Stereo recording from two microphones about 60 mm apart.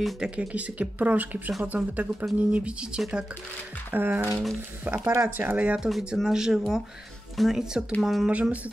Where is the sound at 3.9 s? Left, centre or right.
Right.